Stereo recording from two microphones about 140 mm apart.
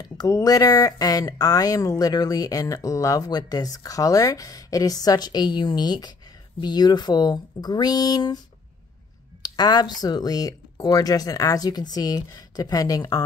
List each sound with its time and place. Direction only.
0.0 s speech: 30° left (ahead or behind)
9.4 s speech: 30° left (ahead or behind)